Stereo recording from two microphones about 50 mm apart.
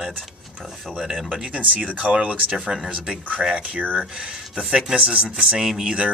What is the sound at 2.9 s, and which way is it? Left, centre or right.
Speech, right.